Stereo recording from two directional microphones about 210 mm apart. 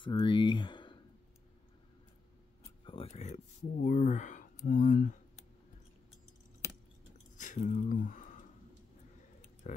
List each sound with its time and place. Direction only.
0.0 s speech: 25° left (ahead or behind)
2.8 s a sound: 25° left (ahead or behind)
3.8 s speech: 35° left (ahead or behind)
7.3 s speech: 35° left (ahead or behind)
9.6 s speech: 35° left (ahead or behind)